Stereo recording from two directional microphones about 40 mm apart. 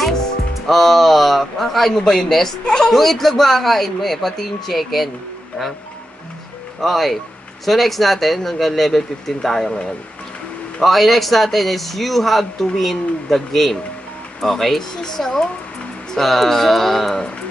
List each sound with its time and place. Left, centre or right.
0.7 s a sound: centre
2.0 s speech: centre
2.6 s speech: left
2.9 s speech: centre
6.8 s speech: centre
10.8 s speech: centre